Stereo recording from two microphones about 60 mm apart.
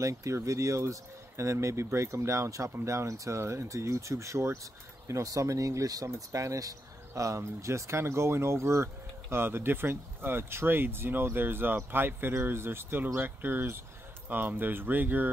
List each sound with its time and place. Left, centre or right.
0.0 s speech: right
6.1 s speech: right